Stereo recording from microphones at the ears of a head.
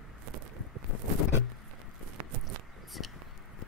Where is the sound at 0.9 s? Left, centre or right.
Left.